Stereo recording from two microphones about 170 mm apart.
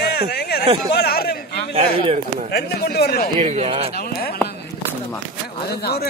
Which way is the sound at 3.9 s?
65° left (ahead or behind).